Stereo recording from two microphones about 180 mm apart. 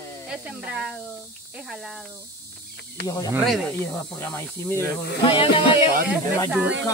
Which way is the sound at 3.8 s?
15° left (ahead or behind).